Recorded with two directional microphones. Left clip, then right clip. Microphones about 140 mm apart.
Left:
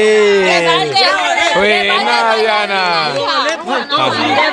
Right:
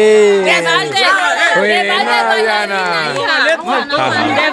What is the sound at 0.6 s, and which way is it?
Speech, 90° right.